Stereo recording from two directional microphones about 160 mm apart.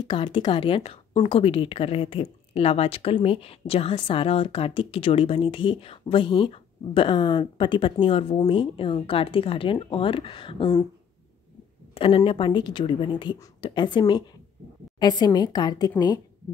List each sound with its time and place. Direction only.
0.0 s speech: 30° left (ahead or behind)
11.9 s a sound: 35° left (ahead or behind)
12.2 s a woman's voice: 30° left (ahead or behind)